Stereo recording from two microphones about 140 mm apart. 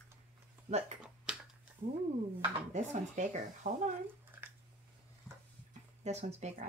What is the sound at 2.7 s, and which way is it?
Speech, 60° right (ahead or behind).